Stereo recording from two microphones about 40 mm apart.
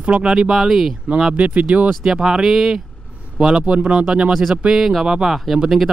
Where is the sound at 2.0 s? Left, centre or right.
Centre.